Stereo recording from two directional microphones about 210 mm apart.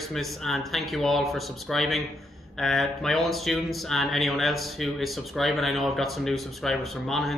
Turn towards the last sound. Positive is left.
turn(degrees=0)  # may be behind; listen again after turning